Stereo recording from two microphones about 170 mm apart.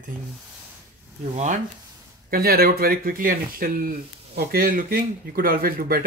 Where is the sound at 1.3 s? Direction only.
45° right (ahead or behind).